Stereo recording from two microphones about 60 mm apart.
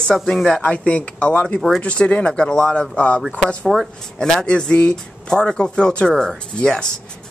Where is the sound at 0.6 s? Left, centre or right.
Left.